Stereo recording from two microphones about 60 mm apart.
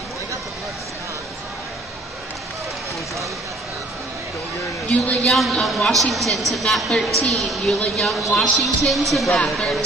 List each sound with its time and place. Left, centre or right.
4.9 s a man's voice: left
5.2 s a woman's voice: centre